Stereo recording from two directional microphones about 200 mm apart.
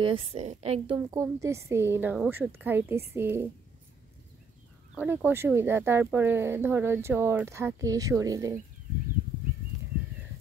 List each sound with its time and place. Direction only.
0.0 s a woman's voice: 30° right (ahead or behind)
0.9 s speech: 15° right (ahead or behind)
4.9 s speech: 10° right (ahead or behind)